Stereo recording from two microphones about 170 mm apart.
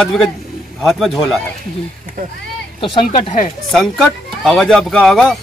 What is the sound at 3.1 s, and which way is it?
Speech, 45° left (ahead or behind).